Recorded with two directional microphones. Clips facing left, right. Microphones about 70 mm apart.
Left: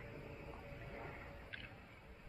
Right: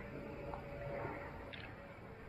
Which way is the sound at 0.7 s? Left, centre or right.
Right.